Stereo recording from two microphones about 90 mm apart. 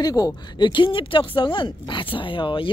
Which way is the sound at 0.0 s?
45° left (ahead or behind).